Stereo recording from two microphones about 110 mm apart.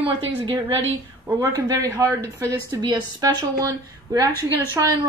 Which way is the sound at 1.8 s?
30° right (ahead or behind).